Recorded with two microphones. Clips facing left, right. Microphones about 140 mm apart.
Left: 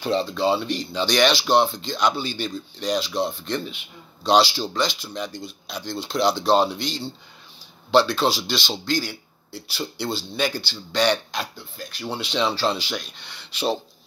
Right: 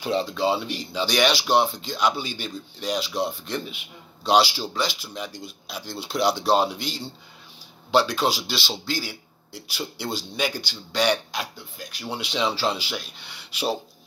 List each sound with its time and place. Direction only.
0.0 s speech: 10° right (ahead or behind)